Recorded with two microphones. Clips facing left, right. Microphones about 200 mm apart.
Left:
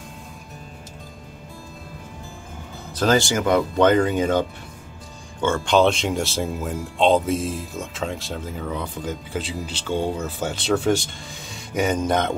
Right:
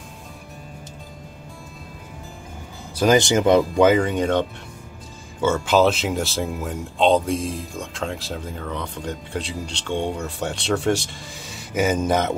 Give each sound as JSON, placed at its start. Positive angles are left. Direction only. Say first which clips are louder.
{"t": 2.9, "sound": "speech", "louder": "right 3 dB", "side_deg": -10}
{"t": 3.8, "sound": "speech", "louder": "even", "side_deg": 0}